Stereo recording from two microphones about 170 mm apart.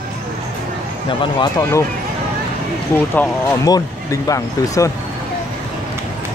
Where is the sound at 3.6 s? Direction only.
20° left (ahead or behind).